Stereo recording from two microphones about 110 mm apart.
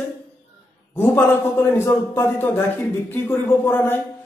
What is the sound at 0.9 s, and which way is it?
Speech, 20° left (ahead or behind).